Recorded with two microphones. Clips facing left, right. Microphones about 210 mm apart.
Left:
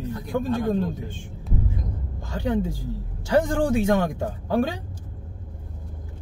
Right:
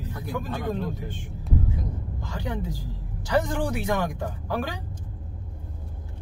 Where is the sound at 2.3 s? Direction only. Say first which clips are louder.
Left 7 dB; 25° left (ahead or behind).